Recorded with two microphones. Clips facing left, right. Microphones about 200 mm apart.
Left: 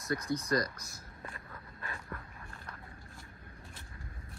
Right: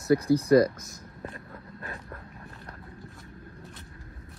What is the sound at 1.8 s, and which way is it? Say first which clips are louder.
Dog: right 2 dB; 35° right (ahead or behind).